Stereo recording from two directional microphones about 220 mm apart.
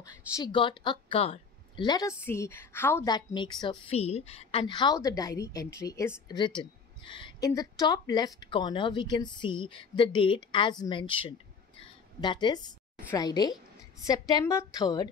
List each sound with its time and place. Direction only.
0.4 s a woman's voice: 20° left (ahead or behind)